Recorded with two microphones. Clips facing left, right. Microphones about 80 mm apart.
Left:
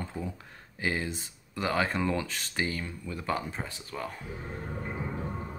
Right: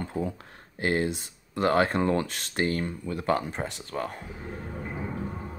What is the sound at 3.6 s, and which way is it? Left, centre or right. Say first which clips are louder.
Speech: right 6 dB; right.